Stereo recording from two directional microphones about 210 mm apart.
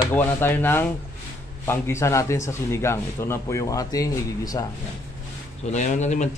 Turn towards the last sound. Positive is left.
turn(degrees=35)  # may be behind; listen again after turning